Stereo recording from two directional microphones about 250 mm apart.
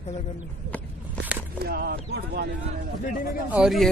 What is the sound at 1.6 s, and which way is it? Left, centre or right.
Speech, right.